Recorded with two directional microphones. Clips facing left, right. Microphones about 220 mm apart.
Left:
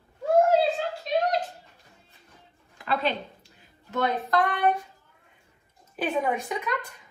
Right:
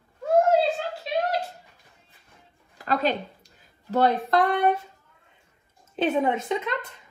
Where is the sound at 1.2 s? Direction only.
10° right (ahead or behind).